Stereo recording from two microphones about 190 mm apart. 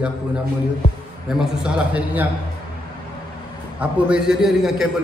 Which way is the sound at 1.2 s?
5° right (ahead or behind).